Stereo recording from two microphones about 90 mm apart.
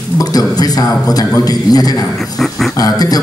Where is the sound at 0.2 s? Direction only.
45° left (ahead or behind).